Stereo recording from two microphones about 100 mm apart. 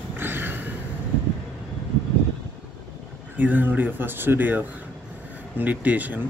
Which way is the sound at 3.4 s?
15° right (ahead or behind).